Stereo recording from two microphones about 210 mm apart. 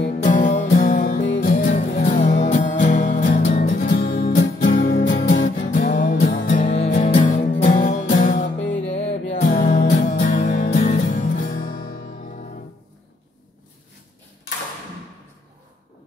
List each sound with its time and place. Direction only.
0.3 s music: 35° left (ahead or behind)
1.2 s music: 55° left (ahead or behind)
1.5 s music: 40° left (ahead or behind)